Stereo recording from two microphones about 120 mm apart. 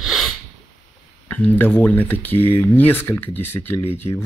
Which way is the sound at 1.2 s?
15° left (ahead or behind).